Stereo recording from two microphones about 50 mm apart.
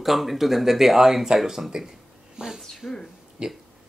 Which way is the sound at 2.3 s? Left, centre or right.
Centre.